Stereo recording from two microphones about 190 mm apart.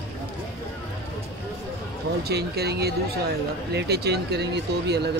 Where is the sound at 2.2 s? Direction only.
55° right (ahead or behind).